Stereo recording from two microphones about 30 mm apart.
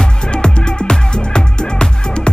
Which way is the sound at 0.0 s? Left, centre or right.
Left.